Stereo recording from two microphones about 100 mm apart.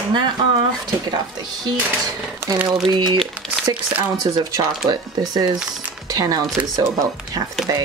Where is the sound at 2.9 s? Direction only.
50° right (ahead or behind).